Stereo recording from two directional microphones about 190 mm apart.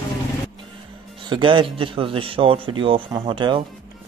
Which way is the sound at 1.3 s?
25° right (ahead or behind).